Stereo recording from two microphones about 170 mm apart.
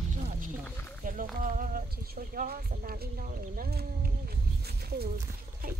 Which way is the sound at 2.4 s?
60° right (ahead or behind).